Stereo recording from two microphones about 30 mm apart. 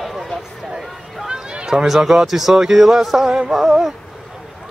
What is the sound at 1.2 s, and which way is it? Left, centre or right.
Run, right.